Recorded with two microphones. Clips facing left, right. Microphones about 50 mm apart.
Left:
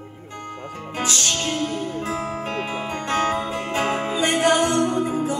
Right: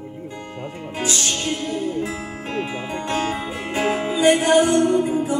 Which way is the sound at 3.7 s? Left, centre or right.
Centre.